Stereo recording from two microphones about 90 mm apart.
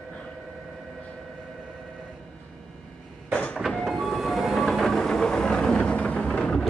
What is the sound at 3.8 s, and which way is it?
Vehicle, centre (ahead or behind).